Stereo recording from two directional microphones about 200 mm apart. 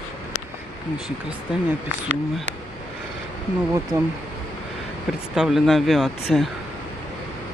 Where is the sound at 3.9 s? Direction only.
15° right (ahead or behind).